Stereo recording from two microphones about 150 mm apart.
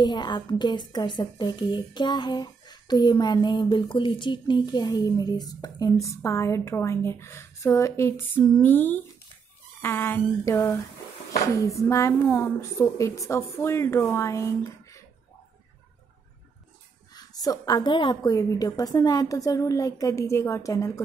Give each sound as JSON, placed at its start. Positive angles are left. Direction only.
{"t": 0.0, "sound": "a woman's voice", "side_deg": 30}
{"t": 8.5, "sound": "a sound", "side_deg": 10}
{"t": 11.5, "sound": "a woman's voice", "side_deg": 20}
{"t": 17.1, "sound": "a woman's voice", "side_deg": 25}